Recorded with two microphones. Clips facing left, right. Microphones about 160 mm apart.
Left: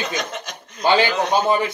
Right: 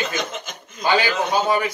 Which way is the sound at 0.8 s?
25° left (ahead or behind).